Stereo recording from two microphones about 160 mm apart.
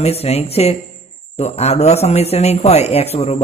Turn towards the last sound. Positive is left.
turn(degrees=40)  # may be behind; listen again after turning